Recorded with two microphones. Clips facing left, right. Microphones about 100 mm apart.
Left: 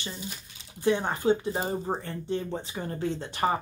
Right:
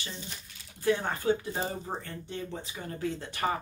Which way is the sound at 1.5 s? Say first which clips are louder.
Left 4 dB; 30° left (ahead or behind).